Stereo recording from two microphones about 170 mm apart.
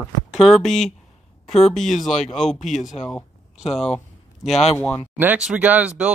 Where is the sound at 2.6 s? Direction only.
45° left (ahead or behind).